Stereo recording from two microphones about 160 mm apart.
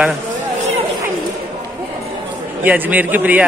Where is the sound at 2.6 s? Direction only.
10° right (ahead or behind).